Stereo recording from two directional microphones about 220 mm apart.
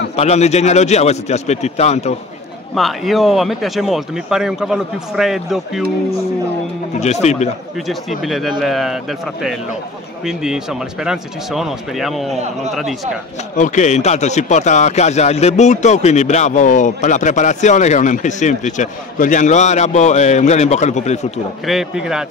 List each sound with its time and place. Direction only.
0.1 s a man's voice: 30° left (ahead or behind)
2.7 s speech: centre (ahead or behind)
7.0 s speech: 30° left (ahead or behind)
7.7 s speech: centre (ahead or behind)
13.6 s speech: 35° left (ahead or behind)
21.6 s speech: centre (ahead or behind)